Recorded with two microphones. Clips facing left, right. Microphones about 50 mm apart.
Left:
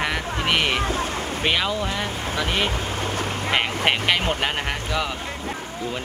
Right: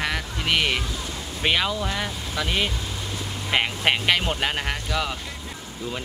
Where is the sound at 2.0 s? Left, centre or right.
Left.